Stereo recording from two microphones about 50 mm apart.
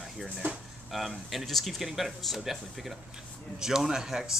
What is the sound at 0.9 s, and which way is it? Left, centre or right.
Speech, centre.